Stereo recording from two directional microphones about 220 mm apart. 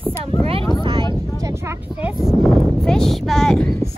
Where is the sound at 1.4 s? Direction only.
15° right (ahead or behind); by 3.8 s 5° left (ahead or behind).